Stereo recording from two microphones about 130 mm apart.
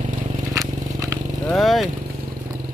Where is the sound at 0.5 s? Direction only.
25° right (ahead or behind).